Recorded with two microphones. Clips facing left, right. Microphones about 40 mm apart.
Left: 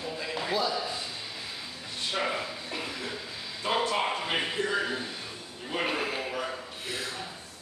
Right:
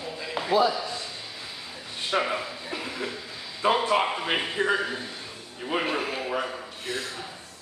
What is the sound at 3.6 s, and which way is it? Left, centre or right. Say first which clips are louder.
Speech: right 6 dB; right.